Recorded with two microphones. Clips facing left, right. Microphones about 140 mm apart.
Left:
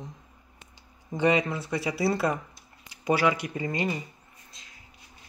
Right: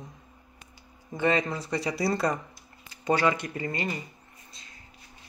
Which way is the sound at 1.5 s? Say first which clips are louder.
Even; 5° left (ahead or behind).